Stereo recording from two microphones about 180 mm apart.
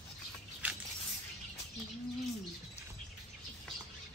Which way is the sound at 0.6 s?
10° right (ahead or behind).